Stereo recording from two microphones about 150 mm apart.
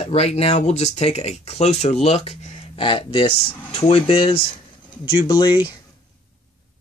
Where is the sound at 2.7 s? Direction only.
35° left (ahead or behind).